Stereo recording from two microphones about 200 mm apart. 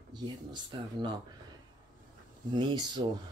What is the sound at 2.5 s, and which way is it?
Speech, 20° right (ahead or behind).